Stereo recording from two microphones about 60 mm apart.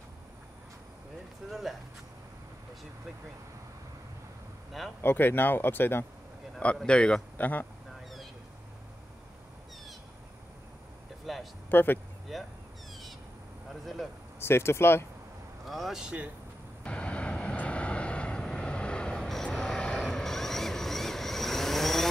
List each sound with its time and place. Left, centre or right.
1.5 s speech: centre
5.0 s speech: left
6.9 s a man's voice: centre
7.3 s speech: left
11.3 s a sound: centre
11.7 s speech: left
12.3 s speech: centre
14.4 s speech: left
15.6 s speech: centre
16.0 s speech: right
16.8 s vehicle: centre